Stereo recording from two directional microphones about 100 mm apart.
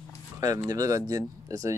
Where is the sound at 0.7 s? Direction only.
35° right (ahead or behind).